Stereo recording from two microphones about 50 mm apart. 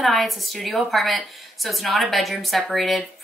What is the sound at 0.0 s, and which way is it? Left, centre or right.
Speech, centre.